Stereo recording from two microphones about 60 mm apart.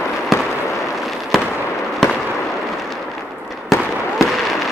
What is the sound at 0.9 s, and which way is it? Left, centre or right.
Fireworks, centre.